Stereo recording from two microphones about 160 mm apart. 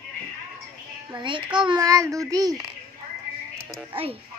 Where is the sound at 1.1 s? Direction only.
30° right (ahead or behind).